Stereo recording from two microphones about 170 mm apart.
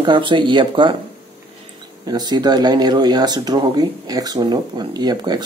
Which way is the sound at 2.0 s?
25° right (ahead or behind).